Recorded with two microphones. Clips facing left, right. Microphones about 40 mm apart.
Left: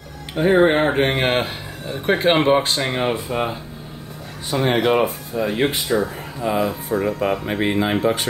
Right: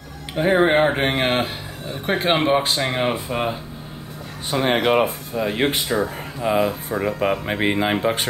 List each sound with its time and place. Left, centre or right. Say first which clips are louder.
0.4 s speech: left 1 dB; centre
4.5 s speech: left 1 dB; right
6.4 s speech: right 1 dB; right